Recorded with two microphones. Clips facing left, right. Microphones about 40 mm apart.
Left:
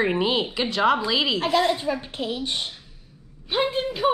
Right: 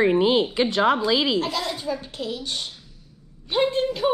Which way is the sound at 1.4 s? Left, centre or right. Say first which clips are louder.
Left 6 dB; left.